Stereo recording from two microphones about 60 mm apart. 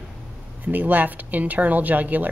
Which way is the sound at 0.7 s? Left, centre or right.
Right.